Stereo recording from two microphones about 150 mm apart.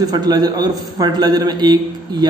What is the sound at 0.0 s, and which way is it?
A man's voice, 25° right (ahead or behind).